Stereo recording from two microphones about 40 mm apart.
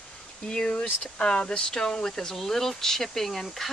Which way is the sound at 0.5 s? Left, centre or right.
Left.